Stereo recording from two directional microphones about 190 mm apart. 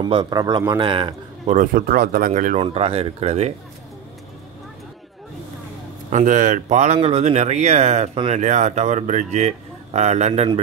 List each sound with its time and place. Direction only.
0.0 s a man's voice: 25° right (ahead or behind)
1.6 s speech: 50° right (ahead or behind)
2.6 s speech: 30° right (ahead or behind)
6.0 s speech: 40° right (ahead or behind)